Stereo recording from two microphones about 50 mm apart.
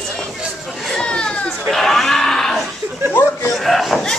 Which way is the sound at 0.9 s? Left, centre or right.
Centre.